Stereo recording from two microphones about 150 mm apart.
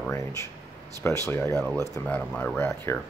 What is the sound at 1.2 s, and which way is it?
Speech, 15° left (ahead or behind).